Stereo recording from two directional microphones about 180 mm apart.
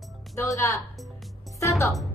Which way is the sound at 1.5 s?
15° left (ahead or behind).